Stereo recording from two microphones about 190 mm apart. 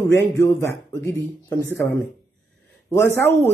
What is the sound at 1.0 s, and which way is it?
Speech, 20° left (ahead or behind).